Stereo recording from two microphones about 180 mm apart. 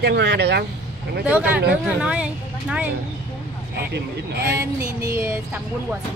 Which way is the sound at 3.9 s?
65° right (ahead or behind).